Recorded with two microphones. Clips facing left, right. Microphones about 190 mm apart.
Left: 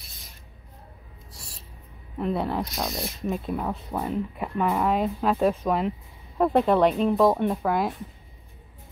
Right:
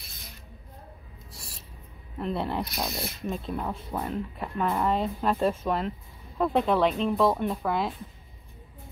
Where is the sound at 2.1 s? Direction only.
5° left (ahead or behind).